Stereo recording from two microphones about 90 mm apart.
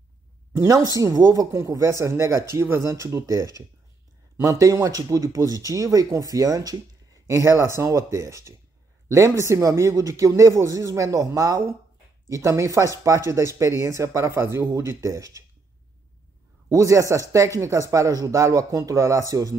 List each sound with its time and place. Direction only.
0.5 s speech: 40° right (ahead or behind)
16.6 s speech: 35° right (ahead or behind)